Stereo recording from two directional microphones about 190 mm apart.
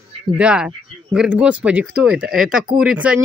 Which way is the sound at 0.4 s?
5° right (ahead or behind).